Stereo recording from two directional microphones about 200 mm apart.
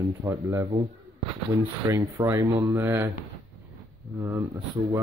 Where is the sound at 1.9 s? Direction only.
15° right (ahead or behind).